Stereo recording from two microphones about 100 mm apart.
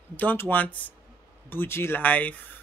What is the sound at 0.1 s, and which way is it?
Speech, 20° left (ahead or behind).